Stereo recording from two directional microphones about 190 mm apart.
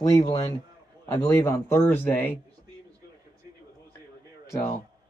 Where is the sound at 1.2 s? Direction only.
15° left (ahead or behind).